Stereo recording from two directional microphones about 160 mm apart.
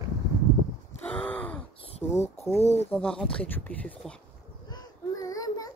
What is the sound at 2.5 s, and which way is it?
Speech, 15° left (ahead or behind).